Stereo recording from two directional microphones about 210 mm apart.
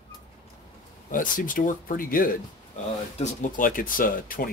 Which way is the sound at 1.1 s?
40° left (ahead or behind).